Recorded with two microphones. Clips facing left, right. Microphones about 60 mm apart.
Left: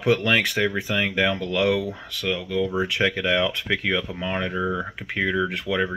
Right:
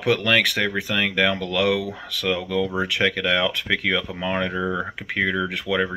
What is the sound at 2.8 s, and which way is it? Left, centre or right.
Speech, right.